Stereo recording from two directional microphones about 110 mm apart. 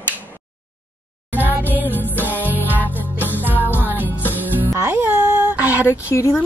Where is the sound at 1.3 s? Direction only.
15° right (ahead or behind).